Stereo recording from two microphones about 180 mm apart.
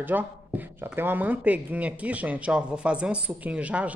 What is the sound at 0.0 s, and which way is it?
A woman's voice, 10° right (ahead or behind).